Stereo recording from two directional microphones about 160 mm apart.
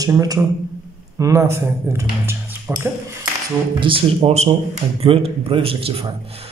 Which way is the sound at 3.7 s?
35° right (ahead or behind).